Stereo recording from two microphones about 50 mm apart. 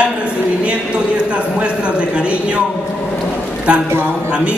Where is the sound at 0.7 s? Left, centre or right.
Right.